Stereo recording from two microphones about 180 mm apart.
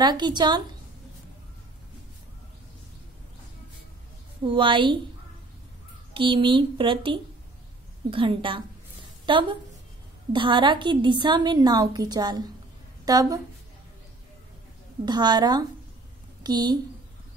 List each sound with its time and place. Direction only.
0.0 s a woman's voice: 25° right (ahead or behind)
4.5 s a woman's voice: 25° right (ahead or behind)
6.1 s a woman's voice: 30° right (ahead or behind)
15.0 s a woman's voice: 25° right (ahead or behind)